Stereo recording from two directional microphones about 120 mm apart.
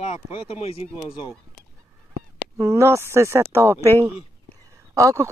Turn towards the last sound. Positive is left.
turn(degrees=-25)  # may be behind; listen again after turning